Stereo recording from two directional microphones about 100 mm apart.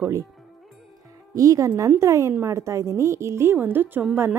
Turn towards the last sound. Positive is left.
turn(degrees=-20)  # may be behind; listen again after turning